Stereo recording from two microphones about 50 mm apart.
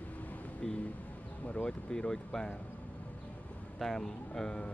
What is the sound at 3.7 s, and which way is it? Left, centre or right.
Speech, centre.